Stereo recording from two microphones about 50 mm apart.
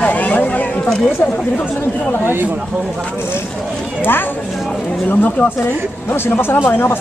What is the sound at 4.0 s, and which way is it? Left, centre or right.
Speech, left.